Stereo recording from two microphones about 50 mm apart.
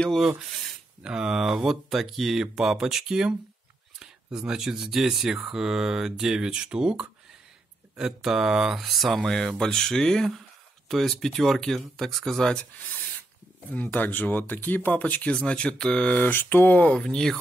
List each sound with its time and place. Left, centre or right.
0.4 s speech: centre
1.0 s speech: centre
9.2 s speech: centre
12.5 s speech: left
16.2 s speech: left
16.9 s speech: left